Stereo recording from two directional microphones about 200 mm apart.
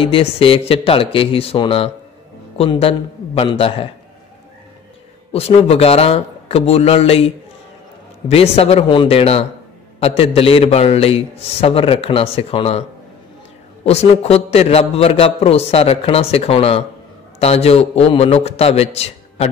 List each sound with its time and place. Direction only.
0.0 s a man's voice: 25° left (ahead or behind)
5.3 s a man's voice: 30° left (ahead or behind)
13.8 s a man's voice: 30° left (ahead or behind)